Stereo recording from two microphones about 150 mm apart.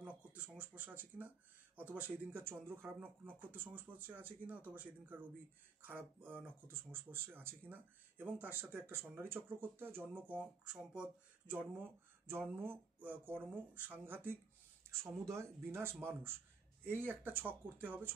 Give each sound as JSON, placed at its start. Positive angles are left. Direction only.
{"t": 0.0, "sound": "speech", "side_deg": -10}